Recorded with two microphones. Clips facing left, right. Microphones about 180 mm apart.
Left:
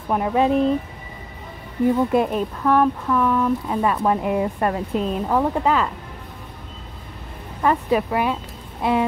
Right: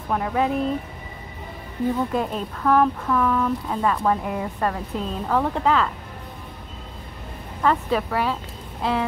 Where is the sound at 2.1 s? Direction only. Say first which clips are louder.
Left 5 dB; 10° left (ahead or behind).